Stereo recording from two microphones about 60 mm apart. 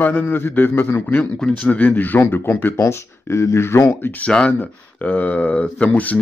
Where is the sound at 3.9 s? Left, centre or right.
Left.